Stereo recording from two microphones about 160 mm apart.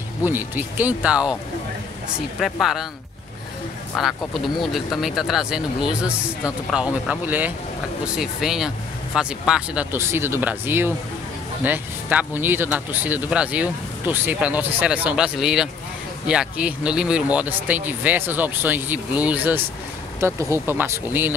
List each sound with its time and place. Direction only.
0.2 s speech: 10° right (ahead or behind)
2.4 s speech: centre (ahead or behind)
4.0 s speech: centre (ahead or behind)
9.9 s speech: 15° right (ahead or behind)